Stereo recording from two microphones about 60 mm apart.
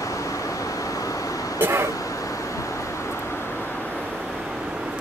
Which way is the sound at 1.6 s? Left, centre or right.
Right.